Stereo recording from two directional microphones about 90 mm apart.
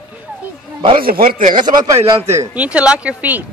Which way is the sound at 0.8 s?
65° right (ahead or behind).